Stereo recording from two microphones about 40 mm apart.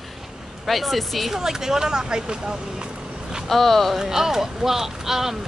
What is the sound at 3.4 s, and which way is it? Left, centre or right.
Speech, centre.